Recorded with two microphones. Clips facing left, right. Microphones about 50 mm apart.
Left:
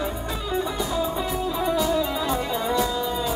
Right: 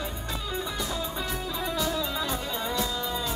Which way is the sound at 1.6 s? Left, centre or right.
Centre.